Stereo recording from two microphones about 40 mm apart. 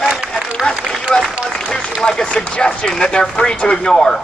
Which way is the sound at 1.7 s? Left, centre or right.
Centre.